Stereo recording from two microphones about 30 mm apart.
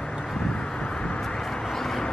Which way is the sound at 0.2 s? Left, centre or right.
Centre.